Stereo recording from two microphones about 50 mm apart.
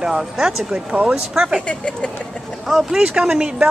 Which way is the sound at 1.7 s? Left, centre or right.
Left.